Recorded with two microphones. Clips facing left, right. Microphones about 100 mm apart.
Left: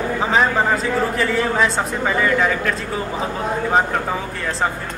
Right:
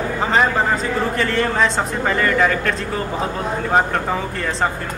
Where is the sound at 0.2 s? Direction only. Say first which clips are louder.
Right 1 dB; centre (ahead or behind).